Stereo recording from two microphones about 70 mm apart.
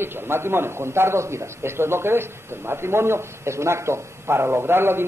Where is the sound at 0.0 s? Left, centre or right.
Right.